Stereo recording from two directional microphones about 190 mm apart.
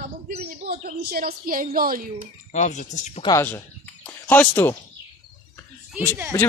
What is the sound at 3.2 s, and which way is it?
Speech, 20° left (ahead or behind).